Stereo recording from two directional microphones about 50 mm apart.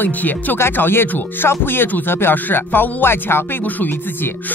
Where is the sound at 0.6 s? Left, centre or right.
Left.